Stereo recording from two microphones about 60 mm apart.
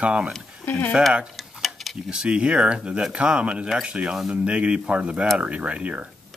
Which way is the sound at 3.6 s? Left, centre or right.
Centre.